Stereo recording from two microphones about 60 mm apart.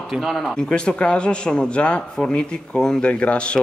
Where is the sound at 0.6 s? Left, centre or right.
Centre.